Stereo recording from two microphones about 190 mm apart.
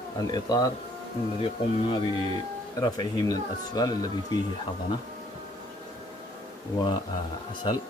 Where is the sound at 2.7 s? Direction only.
20° left (ahead or behind).